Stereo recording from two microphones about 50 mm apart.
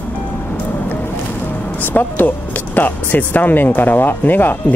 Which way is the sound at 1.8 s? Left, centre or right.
Left.